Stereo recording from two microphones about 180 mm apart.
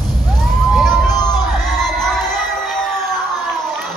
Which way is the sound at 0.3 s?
5° left (ahead or behind).